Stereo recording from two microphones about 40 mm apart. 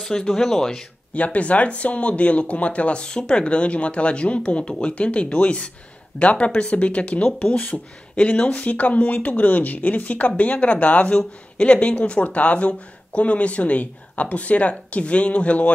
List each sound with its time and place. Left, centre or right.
0.0 s speech: centre
1.1 s speech: left
11.1 s speech: left